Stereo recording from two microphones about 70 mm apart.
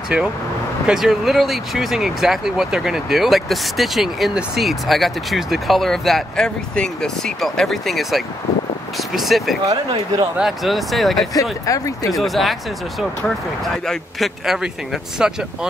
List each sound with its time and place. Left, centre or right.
0.1 s speech: centre
0.8 s speech: centre
10.6 s speech: centre
11.6 s speech: left
12.1 s speech: centre
14.4 s speech: centre